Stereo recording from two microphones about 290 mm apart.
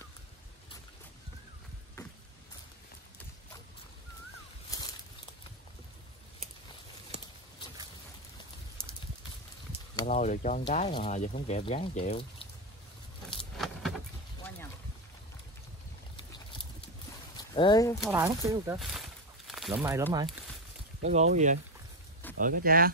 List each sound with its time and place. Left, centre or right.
4.6 s a sound: centre
9.7 s speech: left
13.6 s vehicle: centre
17.4 s speech: centre
18.0 s speech: centre
18.8 s a sound: centre
21.0 s speech: right